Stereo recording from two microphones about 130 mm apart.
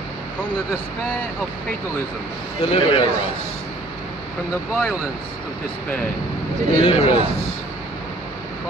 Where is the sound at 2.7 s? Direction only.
45° left (ahead or behind).